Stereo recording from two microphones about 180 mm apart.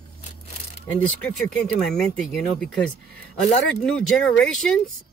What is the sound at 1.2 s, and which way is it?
Speech, 5° left (ahead or behind).